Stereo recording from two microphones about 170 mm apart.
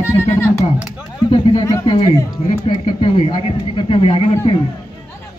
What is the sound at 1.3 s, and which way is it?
Speech, 30° left (ahead or behind).